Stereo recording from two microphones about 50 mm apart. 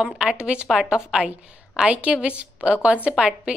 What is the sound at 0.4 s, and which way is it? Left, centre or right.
A woman's voice, right.